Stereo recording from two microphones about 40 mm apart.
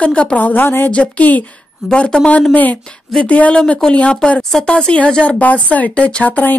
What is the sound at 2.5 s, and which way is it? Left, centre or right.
Speech, left.